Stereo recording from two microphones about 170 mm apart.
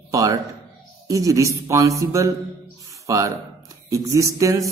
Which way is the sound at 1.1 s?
20° right (ahead or behind).